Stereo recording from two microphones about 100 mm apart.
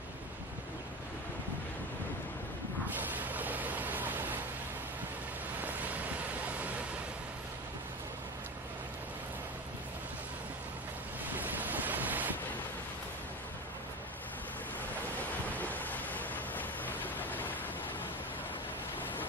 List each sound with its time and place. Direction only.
3.0 s waves: 15° right (ahead or behind)
5.6 s vehicle: 15° right (ahead or behind)
11.2 s boat: 15° right (ahead or behind)
15.4 s vehicle: 15° left (ahead or behind)